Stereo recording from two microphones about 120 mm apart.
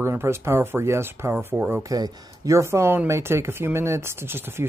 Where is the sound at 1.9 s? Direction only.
30° right (ahead or behind).